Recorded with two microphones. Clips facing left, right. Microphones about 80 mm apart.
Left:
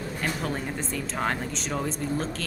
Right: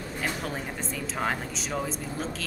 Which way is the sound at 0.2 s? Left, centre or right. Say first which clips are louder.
Left 2 dB; centre.